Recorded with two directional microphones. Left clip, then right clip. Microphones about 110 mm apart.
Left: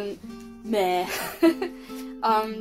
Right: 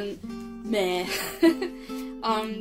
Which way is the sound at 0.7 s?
40° right (ahead or behind).